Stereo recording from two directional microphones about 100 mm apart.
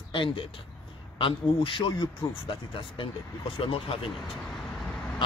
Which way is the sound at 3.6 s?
70° left (ahead or behind).